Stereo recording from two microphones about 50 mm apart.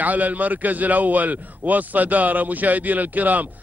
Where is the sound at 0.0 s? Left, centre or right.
Right.